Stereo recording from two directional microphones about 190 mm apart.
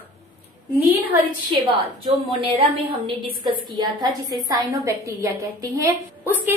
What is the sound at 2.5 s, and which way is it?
A woman's voice, 30° right (ahead or behind).